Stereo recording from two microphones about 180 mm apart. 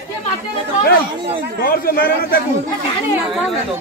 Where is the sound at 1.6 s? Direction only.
55° left (ahead or behind).